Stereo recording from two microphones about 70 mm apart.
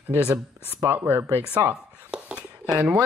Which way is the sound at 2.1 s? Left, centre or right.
Centre.